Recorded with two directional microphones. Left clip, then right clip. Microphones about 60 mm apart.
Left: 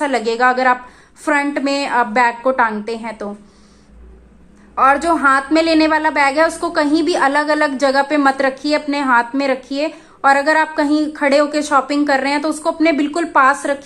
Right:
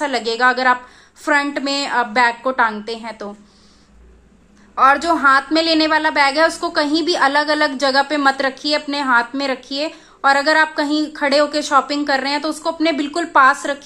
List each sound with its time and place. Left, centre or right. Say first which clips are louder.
0.0 s a woman's voice: left 1 dB; centre
4.7 s a woman's voice: even; centre